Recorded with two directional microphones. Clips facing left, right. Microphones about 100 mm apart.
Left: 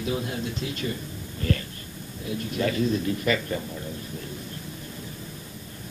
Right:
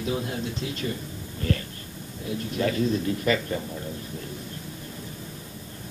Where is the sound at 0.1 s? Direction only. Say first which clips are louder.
Even; 35° right (ahead or behind).